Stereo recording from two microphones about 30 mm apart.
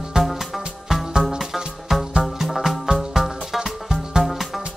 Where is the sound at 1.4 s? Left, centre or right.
Centre.